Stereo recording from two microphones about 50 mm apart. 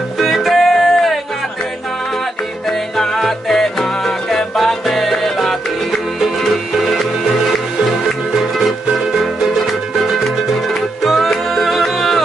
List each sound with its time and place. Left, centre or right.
0.2 s music: centre
3.0 s music: centre
8.4 s music: centre
11.5 s music: centre